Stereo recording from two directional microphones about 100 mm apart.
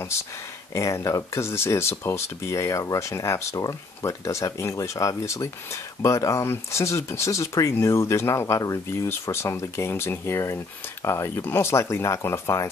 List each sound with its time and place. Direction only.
0.7 s speech: 30° left (ahead or behind)